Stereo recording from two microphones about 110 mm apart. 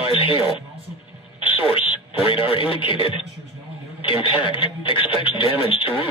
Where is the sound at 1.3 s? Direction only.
55° left (ahead or behind).